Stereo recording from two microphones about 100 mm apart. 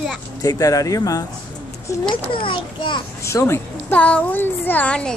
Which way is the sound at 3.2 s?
25° left (ahead or behind).